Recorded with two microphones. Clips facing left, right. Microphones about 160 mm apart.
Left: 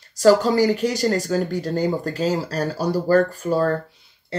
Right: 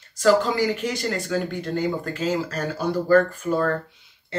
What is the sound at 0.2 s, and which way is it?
Speech, 40° left (ahead or behind).